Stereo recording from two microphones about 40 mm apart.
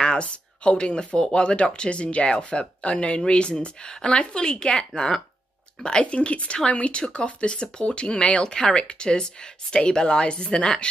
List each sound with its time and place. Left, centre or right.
0.0 s speech: left